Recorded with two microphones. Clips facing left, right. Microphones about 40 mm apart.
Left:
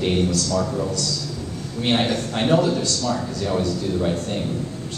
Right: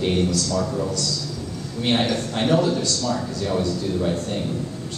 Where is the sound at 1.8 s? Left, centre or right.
Left.